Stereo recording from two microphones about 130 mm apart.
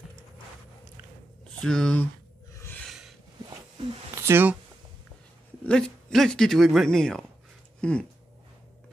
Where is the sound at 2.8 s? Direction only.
Centre (ahead or behind).